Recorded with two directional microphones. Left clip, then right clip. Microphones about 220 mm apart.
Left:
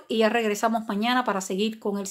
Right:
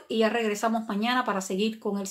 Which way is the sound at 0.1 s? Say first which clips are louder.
Left 3 dB; 40° left (ahead or behind).